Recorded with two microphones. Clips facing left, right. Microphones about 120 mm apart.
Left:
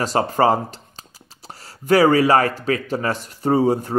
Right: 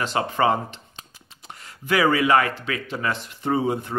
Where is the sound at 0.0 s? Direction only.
40° left (ahead or behind).